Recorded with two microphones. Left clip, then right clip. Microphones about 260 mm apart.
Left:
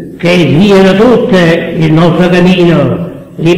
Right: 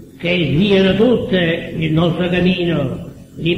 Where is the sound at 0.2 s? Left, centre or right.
Left.